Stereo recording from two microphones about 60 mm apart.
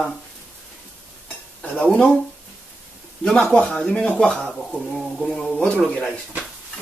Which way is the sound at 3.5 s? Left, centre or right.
Centre.